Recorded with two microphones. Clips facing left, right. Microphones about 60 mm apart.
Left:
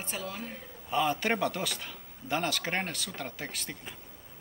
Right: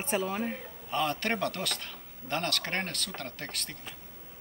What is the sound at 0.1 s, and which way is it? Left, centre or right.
Speech, right.